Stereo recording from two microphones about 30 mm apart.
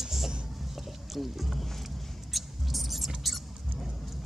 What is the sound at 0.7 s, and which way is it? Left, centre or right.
Boat, centre.